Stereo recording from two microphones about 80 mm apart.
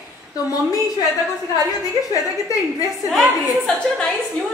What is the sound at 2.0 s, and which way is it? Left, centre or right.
A woman's voice, left.